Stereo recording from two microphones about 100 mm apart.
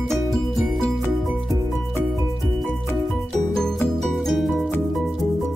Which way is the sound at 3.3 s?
5° left (ahead or behind).